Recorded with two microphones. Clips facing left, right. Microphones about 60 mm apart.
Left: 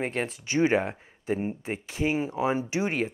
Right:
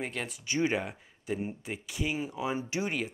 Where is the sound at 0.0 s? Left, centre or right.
Left.